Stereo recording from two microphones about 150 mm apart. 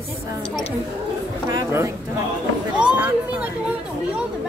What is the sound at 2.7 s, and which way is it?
Speech, 10° right (ahead or behind).